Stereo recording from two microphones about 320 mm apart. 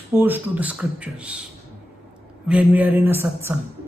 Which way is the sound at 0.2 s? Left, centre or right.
Centre.